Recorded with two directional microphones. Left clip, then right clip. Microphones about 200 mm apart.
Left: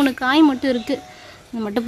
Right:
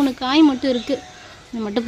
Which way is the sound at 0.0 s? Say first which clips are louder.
Even; 5° right (ahead or behind).